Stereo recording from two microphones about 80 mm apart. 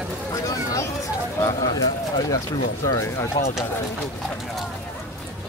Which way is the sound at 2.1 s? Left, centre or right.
Left.